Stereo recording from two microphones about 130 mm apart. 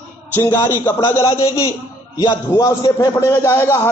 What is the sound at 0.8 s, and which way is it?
A man's voice, 20° left (ahead or behind).